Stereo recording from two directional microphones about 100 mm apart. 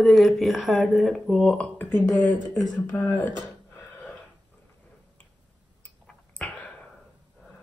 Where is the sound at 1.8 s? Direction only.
15° left (ahead or behind).